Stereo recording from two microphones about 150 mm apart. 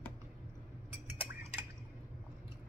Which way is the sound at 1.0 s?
15° right (ahead or behind).